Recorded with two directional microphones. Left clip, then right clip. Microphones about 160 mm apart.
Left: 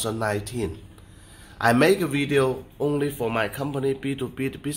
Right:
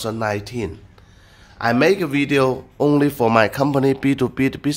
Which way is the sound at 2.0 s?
30° right (ahead or behind).